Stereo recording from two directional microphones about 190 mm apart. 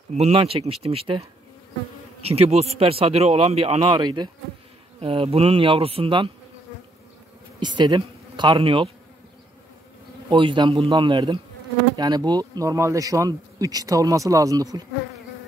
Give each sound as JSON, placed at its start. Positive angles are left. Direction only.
{"t": 0.1, "sound": "speech", "side_deg": -30}
{"t": 2.2, "sound": "speech", "side_deg": -30}
{"t": 7.6, "sound": "speech", "side_deg": -25}
{"t": 10.3, "sound": "speech", "side_deg": -25}